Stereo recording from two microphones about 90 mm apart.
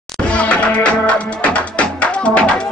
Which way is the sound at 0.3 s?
15° left (ahead or behind).